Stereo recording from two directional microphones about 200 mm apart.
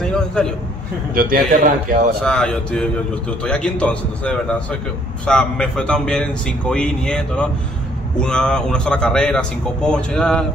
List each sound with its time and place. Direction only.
0.0 s a sound: 5° left (ahead or behind)
1.1 s a man's voice: 45° right (ahead or behind)
2.2 s a man's voice: 5° left (ahead or behind)